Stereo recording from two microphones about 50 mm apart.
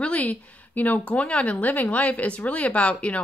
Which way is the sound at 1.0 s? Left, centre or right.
Left.